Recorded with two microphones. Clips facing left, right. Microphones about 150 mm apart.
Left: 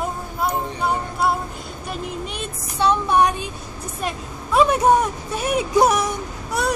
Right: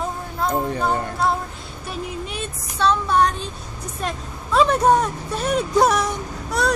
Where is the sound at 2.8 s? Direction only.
15° left (ahead or behind).